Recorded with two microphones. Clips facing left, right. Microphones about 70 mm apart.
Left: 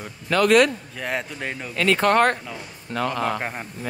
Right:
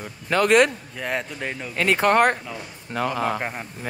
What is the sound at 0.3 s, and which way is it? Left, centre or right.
Speech, right.